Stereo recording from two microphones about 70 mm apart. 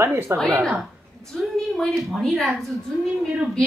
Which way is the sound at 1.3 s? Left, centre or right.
Centre.